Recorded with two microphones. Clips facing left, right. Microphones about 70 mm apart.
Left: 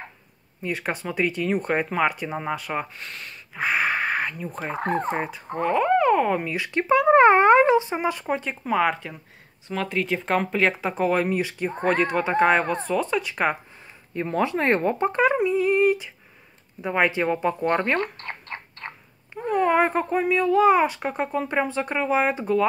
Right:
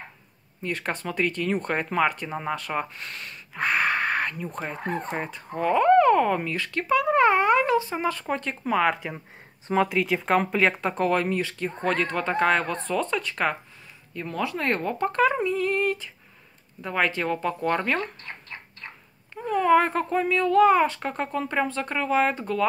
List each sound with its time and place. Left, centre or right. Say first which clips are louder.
0.6 s speech: left 2 dB; centre
4.8 s turkey: left 7 dB; left
5.1 s speech: left 3 dB; centre
6.7 s speech: left 5 dB; left
14.1 s speech: left 5 dB; left
18.0 s a sound: left 4 dB; left
19.3 s speech: right 1 dB; centre